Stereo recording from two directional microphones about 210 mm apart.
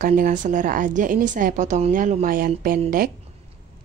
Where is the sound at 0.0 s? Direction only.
40° right (ahead or behind).